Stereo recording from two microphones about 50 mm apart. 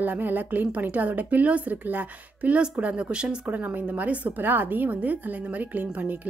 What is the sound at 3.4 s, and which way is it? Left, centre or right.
Speech, right.